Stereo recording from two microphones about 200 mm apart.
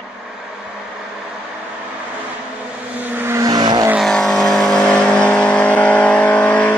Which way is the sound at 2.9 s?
10° right (ahead or behind).